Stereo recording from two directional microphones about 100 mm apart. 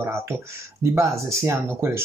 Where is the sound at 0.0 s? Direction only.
25° right (ahead or behind).